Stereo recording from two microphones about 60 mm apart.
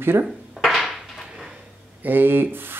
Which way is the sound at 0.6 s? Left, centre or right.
Centre.